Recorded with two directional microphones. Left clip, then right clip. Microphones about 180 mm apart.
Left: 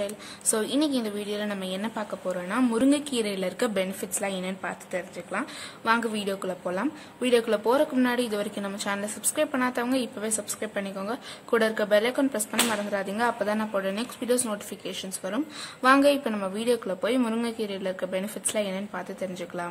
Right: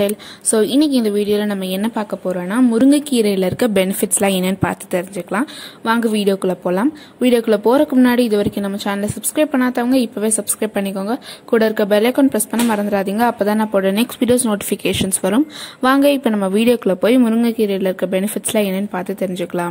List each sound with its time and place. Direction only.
0.0 s a woman's voice: 35° right (ahead or behind)
2.6 s a woman's voice: 25° right (ahead or behind); by 19.7 s 45° right (ahead or behind)